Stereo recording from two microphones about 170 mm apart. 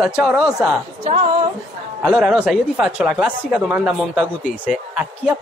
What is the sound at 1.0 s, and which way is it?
Speech, 40° right (ahead or behind).